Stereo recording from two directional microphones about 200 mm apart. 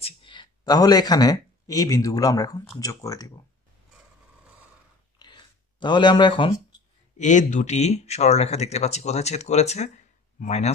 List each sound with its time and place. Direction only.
0.0 s speech: 25° left (ahead or behind)
5.2 s a sound: 20° left (ahead or behind)
7.2 s speech: 35° left (ahead or behind)